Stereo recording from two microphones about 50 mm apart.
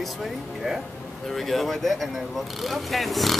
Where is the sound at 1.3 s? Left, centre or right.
Centre.